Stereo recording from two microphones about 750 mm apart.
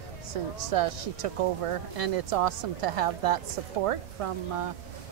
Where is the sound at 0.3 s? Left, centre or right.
Right.